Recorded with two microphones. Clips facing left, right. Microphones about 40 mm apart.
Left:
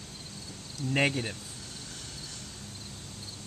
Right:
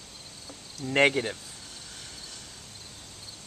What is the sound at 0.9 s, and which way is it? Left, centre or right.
Speech, right.